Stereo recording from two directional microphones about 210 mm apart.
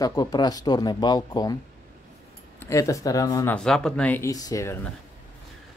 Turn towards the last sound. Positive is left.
turn(degrees=15)  # may be behind; listen again after turning